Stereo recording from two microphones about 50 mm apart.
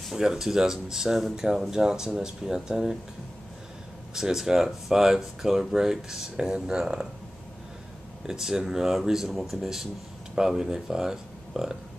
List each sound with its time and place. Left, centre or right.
0.1 s speech: centre
4.1 s speech: centre
8.3 s speech: centre